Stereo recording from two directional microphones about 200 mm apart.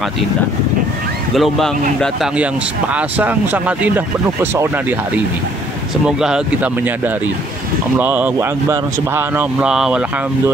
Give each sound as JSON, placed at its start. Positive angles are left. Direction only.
{"t": 1.3, "sound": "speech", "side_deg": 0}
{"t": 6.0, "sound": "speech", "side_deg": -5}